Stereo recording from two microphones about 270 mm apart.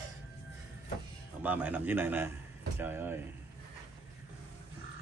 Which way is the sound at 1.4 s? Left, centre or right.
Centre.